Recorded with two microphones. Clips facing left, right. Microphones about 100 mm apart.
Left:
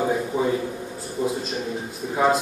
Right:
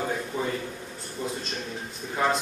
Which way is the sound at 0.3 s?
10° left (ahead or behind).